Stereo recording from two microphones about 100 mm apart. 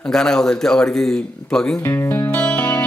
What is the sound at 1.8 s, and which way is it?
Speech, 20° left (ahead or behind).